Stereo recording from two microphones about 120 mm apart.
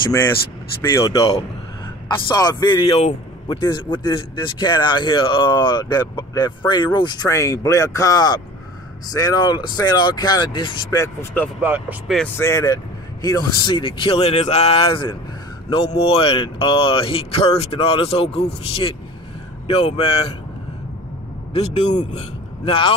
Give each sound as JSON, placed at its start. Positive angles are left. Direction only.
{"t": 0.9, "sound": "a man's voice", "side_deg": 30}
{"t": 2.8, "sound": "a man's voice", "side_deg": 50}
{"t": 7.2, "sound": "a man's voice", "side_deg": 25}
{"t": 11.0, "sound": "speech", "side_deg": 20}
{"t": 11.6, "sound": "speech", "side_deg": -15}
{"t": 12.4, "sound": "speech", "side_deg": 25}
{"t": 21.5, "sound": "speech", "side_deg": 70}
{"t": 22.7, "sound": "speech", "side_deg": 45}